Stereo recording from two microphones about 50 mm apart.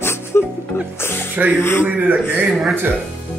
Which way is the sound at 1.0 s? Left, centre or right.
Left.